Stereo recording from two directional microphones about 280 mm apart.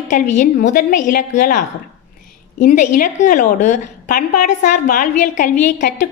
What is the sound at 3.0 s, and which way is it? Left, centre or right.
A woman's voice, left.